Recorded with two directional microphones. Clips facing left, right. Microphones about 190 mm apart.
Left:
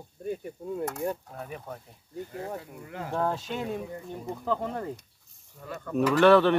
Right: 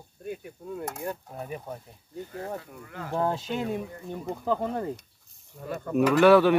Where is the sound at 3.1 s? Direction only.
5° right (ahead or behind).